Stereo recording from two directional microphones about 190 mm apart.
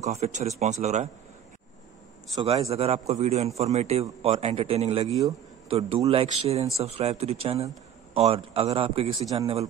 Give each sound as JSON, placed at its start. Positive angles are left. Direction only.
{"t": 0.0, "sound": "a man's voice", "side_deg": -35}
{"t": 2.4, "sound": "a man's voice", "side_deg": -30}